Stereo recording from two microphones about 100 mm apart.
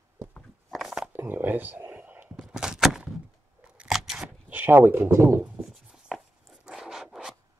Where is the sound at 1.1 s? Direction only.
20° right (ahead or behind).